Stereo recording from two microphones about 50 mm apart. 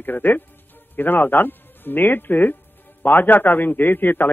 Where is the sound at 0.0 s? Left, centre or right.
Left.